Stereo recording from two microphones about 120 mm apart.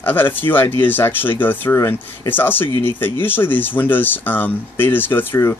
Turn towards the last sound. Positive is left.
turn(degrees=20)  # may be behind; listen again after turning